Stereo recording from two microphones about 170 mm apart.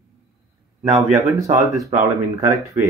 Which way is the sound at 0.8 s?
40° right (ahead or behind).